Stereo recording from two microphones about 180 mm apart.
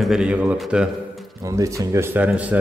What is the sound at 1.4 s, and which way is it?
A man's voice, 15° right (ahead or behind).